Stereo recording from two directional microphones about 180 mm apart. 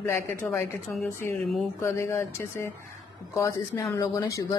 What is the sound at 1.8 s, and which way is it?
A woman's voice, 15° left (ahead or behind).